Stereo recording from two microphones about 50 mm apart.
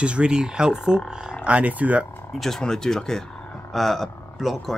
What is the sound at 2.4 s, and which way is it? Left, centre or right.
Speech, centre.